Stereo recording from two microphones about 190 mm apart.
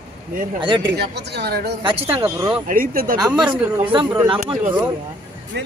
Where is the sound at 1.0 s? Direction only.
60° right (ahead or behind).